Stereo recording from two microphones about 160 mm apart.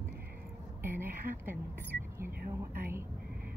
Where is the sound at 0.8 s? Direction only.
15° right (ahead or behind).